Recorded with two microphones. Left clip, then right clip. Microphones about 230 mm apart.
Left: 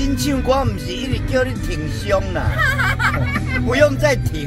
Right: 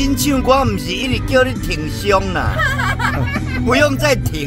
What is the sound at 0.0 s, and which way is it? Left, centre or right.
Speech, right.